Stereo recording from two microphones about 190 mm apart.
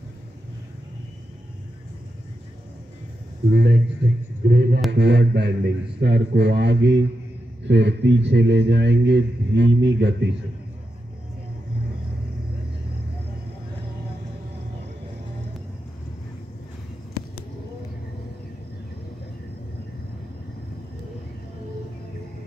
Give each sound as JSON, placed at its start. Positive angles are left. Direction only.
{"t": 3.5, "sound": "a man's voice", "side_deg": -60}